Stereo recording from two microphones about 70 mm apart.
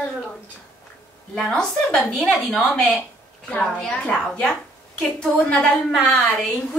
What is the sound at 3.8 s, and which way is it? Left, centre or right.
A woman's voice, centre.